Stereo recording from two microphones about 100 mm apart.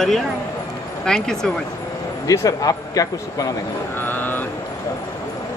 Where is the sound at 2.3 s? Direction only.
35° left (ahead or behind).